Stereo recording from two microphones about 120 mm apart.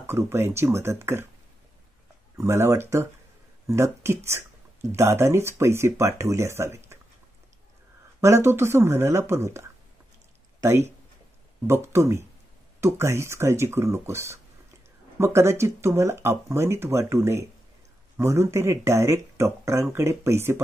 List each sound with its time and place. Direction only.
0.0 s speech: 20° right (ahead or behind)
2.3 s speech: 25° right (ahead or behind)
8.2 s speech: 20° right (ahead or behind)